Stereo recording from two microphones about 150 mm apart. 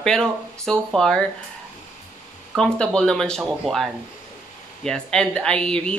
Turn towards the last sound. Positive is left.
turn(degrees=5)  # may be behind; listen again after turning